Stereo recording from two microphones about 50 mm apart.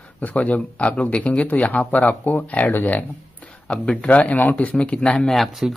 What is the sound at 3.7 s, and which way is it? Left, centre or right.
Speech, left.